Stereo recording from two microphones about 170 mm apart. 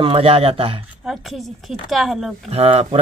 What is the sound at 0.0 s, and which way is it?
Speech, 30° right (ahead or behind).